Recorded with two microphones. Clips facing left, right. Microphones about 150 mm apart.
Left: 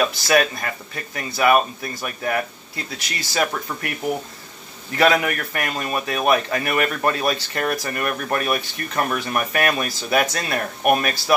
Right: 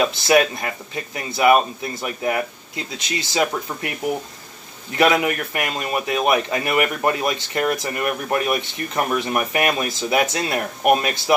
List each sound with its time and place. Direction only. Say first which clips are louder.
0.0 s speech: right 2 dB; 20° right (ahead or behind)
4.9 s speech: right 1 dB; 20° right (ahead or behind)